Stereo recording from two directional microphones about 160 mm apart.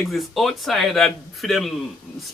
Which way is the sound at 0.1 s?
Centre (ahead or behind).